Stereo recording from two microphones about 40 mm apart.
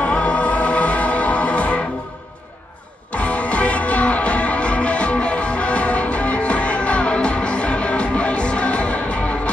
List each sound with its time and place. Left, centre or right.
0.2 s music: left
3.1 s music: left